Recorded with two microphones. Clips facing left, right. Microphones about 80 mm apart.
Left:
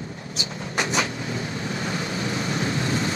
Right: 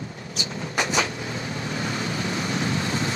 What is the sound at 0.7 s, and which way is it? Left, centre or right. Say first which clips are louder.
Vehicle: even; left.